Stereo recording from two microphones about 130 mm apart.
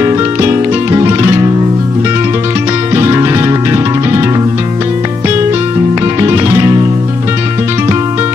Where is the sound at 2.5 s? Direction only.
25° right (ahead or behind).